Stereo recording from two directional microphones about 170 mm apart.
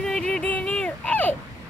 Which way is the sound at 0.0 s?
5° left (ahead or behind).